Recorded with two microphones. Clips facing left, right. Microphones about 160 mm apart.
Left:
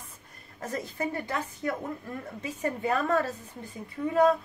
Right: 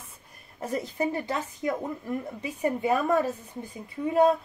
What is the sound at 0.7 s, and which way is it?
A woman's voice, 15° right (ahead or behind).